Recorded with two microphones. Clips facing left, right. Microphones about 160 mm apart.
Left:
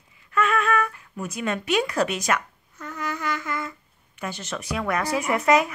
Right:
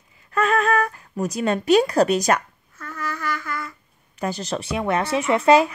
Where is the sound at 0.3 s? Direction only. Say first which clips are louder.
Right 3 dB; 35° right (ahead or behind).